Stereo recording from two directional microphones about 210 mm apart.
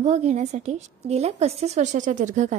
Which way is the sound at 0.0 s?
35° right (ahead or behind).